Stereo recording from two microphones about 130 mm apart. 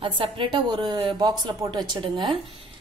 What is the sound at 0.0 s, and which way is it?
A woman's voice, 40° right (ahead or behind).